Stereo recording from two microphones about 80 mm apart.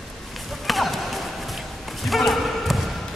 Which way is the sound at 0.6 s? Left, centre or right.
Centre.